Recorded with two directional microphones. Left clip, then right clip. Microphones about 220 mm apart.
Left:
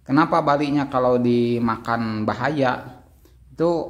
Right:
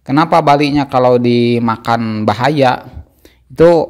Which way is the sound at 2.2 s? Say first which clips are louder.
Right 11 dB; 40° right (ahead or behind).